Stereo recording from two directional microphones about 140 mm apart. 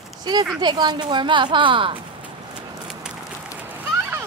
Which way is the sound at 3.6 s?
15° right (ahead or behind).